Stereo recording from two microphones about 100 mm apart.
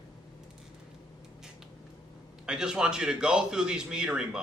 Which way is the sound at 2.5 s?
5° right (ahead or behind).